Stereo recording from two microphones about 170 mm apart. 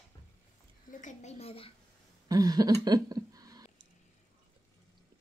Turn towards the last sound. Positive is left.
turn(degrees=-20)  # may be behind; listen again after turning